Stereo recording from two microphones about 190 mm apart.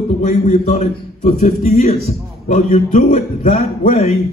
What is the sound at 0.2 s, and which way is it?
A man's voice, 35° left (ahead or behind).